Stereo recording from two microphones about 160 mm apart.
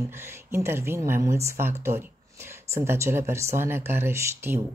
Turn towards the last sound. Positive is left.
turn(degrees=-15)  # may be behind; listen again after turning